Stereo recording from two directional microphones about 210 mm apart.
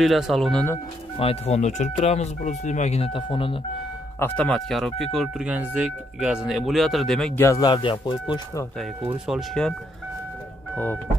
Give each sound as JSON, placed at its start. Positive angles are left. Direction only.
{"t": 0.0, "sound": "speech", "side_deg": 0}
{"t": 1.1, "sound": "speech", "side_deg": 25}
{"t": 4.2, "sound": "speech", "side_deg": 5}
{"t": 7.4, "sound": "speech", "side_deg": 20}
{"t": 9.0, "sound": "speech", "side_deg": 0}